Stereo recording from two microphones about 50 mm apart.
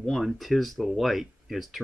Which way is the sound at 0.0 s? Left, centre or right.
Centre.